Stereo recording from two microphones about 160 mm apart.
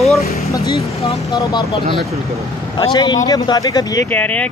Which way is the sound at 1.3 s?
20° left (ahead or behind).